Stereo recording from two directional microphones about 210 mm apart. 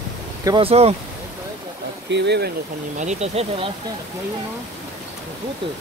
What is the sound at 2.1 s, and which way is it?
Speech, 55° right (ahead or behind).